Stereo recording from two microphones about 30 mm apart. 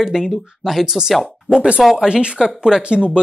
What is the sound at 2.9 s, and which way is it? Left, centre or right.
Speech, right.